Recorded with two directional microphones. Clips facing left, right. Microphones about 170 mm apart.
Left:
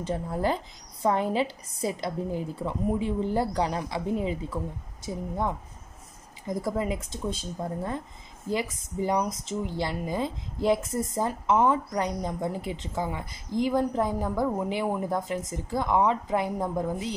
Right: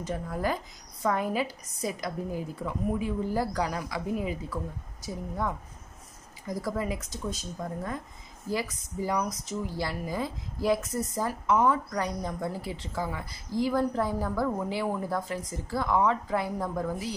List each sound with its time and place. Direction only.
0.0 s speech: 25° left (ahead or behind)
6.4 s speech: 25° left (ahead or behind)